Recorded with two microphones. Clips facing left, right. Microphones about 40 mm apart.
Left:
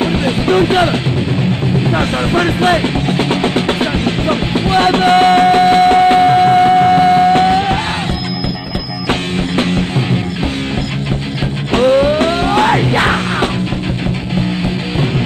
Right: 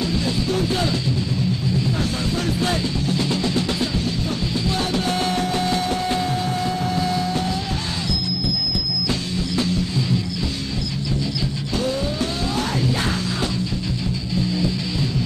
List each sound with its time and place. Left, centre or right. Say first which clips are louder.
0.0 s music: left 8 dB; left
1.9 s music: left 9 dB; left
9.6 s music: left 7 dB; left
11.7 s music: left 15 dB; left